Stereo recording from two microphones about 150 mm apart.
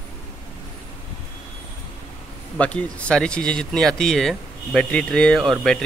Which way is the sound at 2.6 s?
10° left (ahead or behind).